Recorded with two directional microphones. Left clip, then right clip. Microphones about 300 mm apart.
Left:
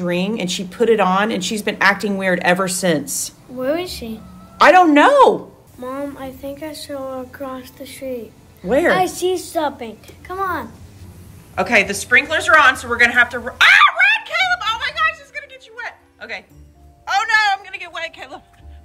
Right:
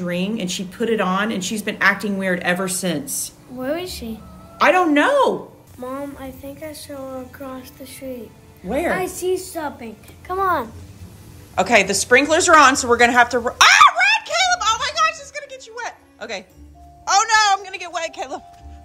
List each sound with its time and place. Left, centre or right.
0.0 s speech: centre
3.5 s a woman's voice: centre
4.6 s speech: centre
5.8 s speech: centre
8.6 s a woman's voice: left
8.9 s speech: centre
10.2 s a woman's voice: centre
13.6 s a sound: centre